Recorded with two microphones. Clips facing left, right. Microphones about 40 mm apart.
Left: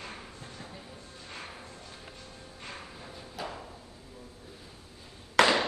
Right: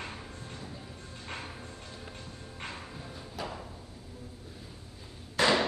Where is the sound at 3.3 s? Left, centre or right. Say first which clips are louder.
Even; centre.